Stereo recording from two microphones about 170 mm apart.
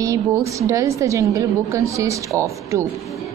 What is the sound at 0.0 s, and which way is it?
A woman's voice, 20° right (ahead or behind).